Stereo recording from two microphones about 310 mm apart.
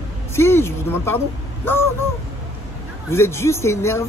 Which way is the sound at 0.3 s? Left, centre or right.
Centre.